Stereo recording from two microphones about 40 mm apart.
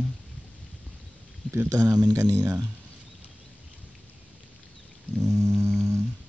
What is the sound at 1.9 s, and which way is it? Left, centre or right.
Speech, right.